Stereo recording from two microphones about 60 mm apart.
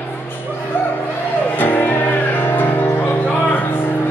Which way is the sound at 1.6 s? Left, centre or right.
Left.